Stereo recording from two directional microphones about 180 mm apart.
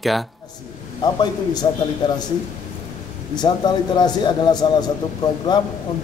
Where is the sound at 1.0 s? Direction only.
25° left (ahead or behind).